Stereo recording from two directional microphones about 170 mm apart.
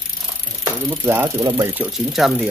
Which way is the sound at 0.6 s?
15° right (ahead or behind).